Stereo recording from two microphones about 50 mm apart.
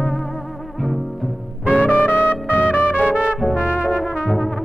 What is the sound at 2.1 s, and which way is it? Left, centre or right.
Music, right.